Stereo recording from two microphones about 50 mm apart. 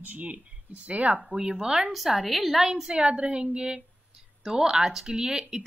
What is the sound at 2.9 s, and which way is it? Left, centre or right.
Speech, right.